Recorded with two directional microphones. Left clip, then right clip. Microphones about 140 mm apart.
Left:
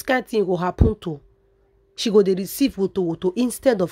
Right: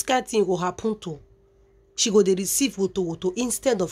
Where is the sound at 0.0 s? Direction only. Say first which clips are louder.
Left 1 dB; 40° left (ahead or behind).